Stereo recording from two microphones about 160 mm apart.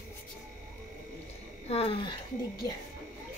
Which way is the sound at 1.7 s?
40° left (ahead or behind).